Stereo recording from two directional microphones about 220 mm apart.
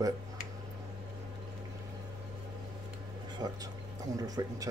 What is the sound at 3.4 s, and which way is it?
Speech, 15° right (ahead or behind).